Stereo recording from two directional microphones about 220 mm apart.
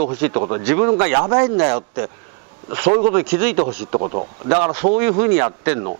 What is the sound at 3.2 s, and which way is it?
Speech, 10° right (ahead or behind).